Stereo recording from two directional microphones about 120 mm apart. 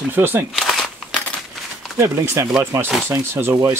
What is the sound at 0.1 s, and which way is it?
Speech, 15° right (ahead or behind).